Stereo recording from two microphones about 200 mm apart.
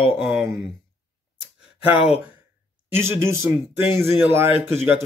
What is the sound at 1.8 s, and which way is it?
Speech, 30° left (ahead or behind).